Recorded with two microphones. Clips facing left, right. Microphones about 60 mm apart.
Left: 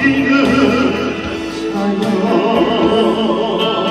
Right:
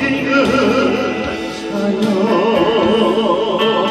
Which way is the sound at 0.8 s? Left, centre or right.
Right.